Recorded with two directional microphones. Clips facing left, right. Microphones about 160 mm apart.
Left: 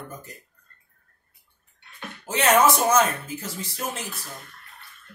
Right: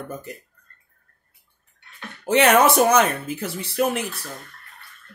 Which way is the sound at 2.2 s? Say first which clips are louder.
Right 3 dB; 65° right (ahead or behind).